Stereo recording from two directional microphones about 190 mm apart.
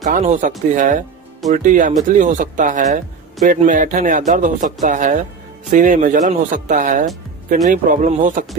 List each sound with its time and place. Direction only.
0.0 s speech: 40° right (ahead or behind)